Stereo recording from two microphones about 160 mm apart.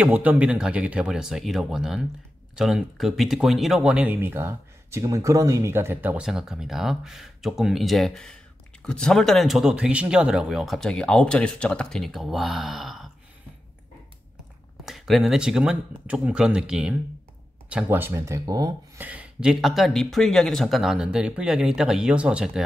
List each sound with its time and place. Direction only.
0.0 s speech: 10° right (ahead or behind)
14.9 s speech: centre (ahead or behind); by 18.7 s 20° right (ahead or behind)
18.9 s speech: 10° right (ahead or behind)